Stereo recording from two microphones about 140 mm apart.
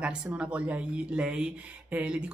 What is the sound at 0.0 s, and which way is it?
Speech, 10° right (ahead or behind).